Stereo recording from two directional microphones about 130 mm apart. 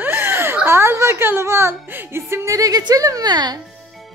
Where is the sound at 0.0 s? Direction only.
15° right (ahead or behind).